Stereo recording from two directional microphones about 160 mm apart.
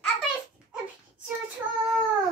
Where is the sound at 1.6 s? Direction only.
10° right (ahead or behind).